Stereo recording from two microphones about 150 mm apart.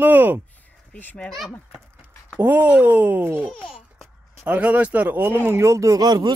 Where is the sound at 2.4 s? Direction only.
10° right (ahead or behind).